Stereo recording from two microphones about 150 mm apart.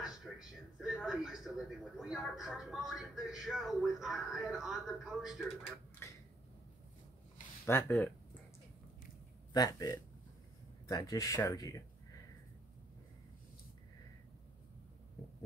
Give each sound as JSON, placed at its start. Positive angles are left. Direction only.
{"t": 0.0, "sound": "a man's voice", "side_deg": -5}
{"t": 6.0, "sound": "a sound", "side_deg": 15}
{"t": 7.6, "sound": "speech", "side_deg": 15}
{"t": 9.5, "sound": "speech", "side_deg": 25}